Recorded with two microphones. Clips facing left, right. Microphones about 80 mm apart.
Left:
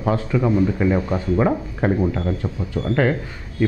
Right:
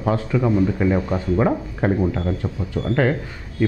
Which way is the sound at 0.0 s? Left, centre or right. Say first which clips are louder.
Even; left.